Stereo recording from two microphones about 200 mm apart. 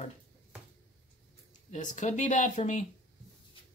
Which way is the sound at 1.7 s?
40° left (ahead or behind).